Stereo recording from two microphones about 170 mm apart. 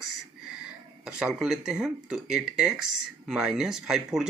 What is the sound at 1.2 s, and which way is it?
Speech, 5° right (ahead or behind).